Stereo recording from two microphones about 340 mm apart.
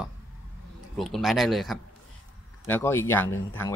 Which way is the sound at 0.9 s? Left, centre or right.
Centre.